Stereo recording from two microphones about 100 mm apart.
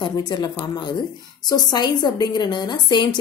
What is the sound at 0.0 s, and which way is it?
A woman's voice, 45° left (ahead or behind).